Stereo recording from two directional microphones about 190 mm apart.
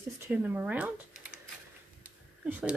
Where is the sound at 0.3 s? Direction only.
10° right (ahead or behind).